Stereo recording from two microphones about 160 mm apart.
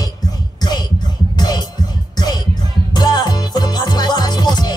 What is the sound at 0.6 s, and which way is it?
Music, 25° left (ahead or behind).